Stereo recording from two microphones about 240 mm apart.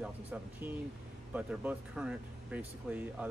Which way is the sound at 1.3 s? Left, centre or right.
Centre.